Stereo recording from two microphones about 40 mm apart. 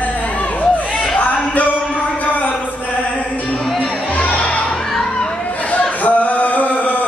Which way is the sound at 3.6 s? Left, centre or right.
Centre.